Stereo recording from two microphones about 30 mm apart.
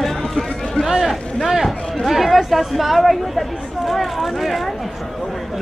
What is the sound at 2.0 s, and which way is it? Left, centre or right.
Speech, centre.